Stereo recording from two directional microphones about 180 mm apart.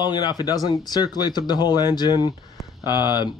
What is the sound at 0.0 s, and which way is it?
Speech, 25° left (ahead or behind).